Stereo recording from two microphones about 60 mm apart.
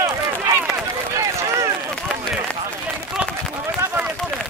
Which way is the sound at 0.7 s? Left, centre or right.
Centre.